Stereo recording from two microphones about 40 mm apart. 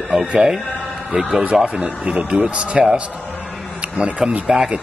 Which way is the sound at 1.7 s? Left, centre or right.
Right.